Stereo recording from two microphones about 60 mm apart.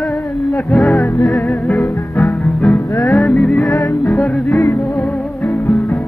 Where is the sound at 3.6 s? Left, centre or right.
Left.